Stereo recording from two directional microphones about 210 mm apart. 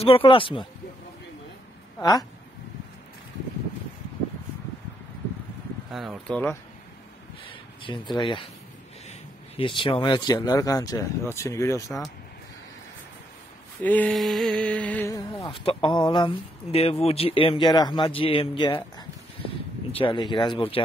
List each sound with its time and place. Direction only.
0.0 s speech: 25° left (ahead or behind)
2.0 s speech: 20° left (ahead or behind)
5.9 s speech: centre (ahead or behind)
7.4 s speech: 25° left (ahead or behind)
9.6 s speech: 25° left (ahead or behind)
13.8 s speech: 5° left (ahead or behind)
15.3 s speech: 25° left (ahead or behind)